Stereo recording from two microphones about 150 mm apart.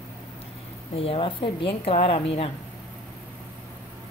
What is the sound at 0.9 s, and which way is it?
A woman's voice, 40° left (ahead or behind).